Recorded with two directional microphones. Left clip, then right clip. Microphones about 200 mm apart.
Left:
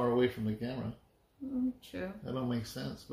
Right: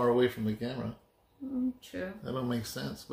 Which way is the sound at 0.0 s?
15° right (ahead or behind).